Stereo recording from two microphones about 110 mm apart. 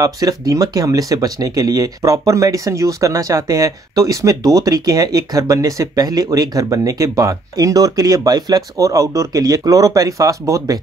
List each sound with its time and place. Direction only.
0.0 s speech: 35° right (ahead or behind)